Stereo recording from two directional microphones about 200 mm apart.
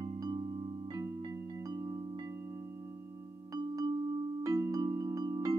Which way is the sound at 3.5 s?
20° right (ahead or behind).